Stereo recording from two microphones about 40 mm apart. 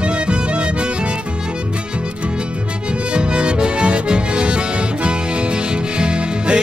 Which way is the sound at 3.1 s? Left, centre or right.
Right.